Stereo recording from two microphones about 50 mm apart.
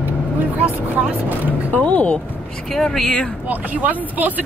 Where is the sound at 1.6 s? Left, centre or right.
Left.